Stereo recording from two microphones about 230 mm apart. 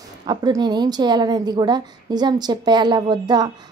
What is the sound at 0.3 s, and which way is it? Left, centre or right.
A woman's voice, centre.